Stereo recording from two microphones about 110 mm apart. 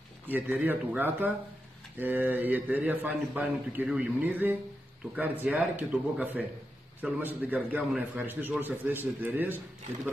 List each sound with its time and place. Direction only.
0.3 s a man's voice: 15° right (ahead or behind)